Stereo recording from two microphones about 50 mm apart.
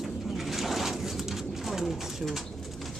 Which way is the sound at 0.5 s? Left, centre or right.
Centre.